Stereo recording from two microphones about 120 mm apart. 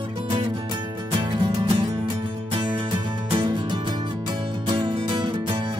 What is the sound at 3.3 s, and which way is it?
Music, 40° right (ahead or behind).